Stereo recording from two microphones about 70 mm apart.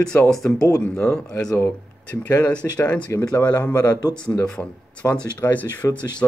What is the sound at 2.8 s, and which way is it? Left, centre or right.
Speech, centre.